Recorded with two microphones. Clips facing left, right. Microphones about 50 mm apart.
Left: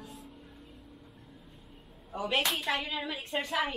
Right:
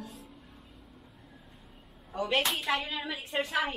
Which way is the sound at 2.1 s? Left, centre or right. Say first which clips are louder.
Right 1 dB; centre.